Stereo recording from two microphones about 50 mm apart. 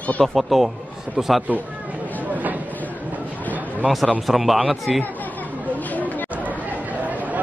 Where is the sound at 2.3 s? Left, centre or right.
Right.